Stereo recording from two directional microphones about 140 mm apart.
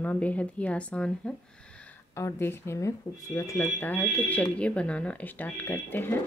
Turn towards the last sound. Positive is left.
turn(degrees=15)  # may be behind; listen again after turning